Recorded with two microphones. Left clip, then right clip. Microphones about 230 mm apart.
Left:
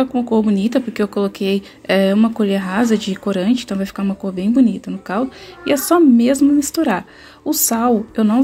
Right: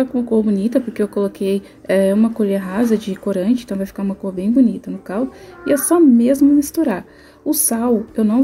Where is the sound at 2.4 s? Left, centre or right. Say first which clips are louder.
Even; centre.